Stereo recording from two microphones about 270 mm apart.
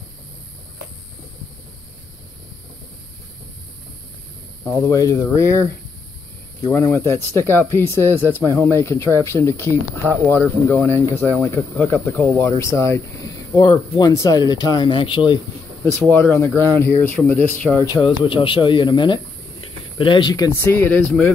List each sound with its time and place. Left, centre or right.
4.6 s speech: centre
6.7 s speech: centre